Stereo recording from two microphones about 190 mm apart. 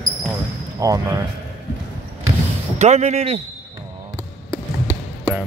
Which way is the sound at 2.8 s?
35° right (ahead or behind).